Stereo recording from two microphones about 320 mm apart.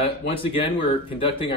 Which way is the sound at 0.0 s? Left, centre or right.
Centre.